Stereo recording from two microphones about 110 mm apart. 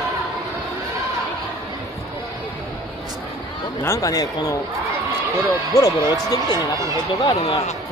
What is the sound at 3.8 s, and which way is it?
Speech, 30° left (ahead or behind).